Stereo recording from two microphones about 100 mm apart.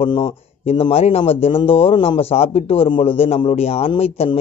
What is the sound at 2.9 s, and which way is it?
Speech, 80° left.